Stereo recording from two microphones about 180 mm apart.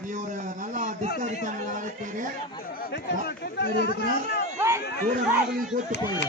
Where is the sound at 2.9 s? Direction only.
65° left (ahead or behind).